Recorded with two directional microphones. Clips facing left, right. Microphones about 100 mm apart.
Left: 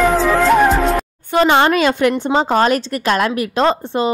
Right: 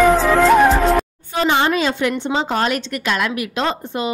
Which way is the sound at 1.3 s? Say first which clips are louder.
Left 5 dB; 65° left (ahead or behind).